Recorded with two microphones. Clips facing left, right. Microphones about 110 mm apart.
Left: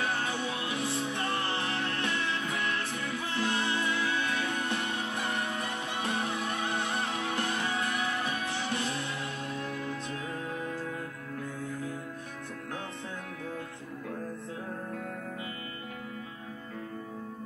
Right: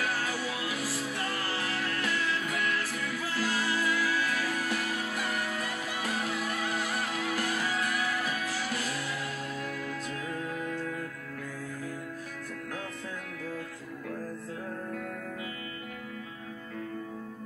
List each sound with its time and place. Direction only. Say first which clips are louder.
0.0 s music: even; 25° left (ahead or behind)
10.6 s music: right 1 dB; 30° left (ahead or behind)